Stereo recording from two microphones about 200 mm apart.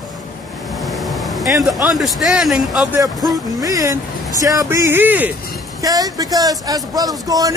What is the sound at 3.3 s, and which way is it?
Speech, 15° right (ahead or behind).